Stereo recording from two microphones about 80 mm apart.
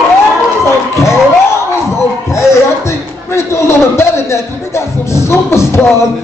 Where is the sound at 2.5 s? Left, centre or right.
Left.